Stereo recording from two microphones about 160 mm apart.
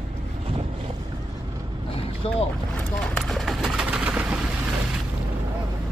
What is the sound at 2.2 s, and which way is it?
Boat, 40° left (ahead or behind).